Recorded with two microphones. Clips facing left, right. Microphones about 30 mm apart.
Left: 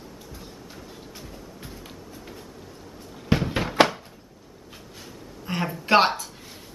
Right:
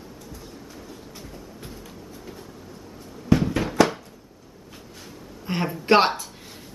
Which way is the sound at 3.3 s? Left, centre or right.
Left.